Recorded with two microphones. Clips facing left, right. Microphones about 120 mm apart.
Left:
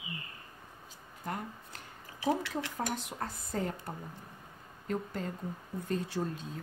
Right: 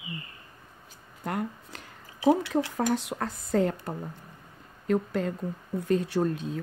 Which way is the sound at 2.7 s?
85° right.